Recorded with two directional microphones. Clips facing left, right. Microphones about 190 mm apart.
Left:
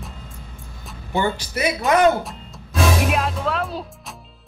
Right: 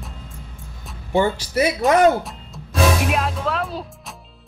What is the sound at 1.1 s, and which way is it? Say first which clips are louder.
Speech: right 3 dB; 30° right (ahead or behind).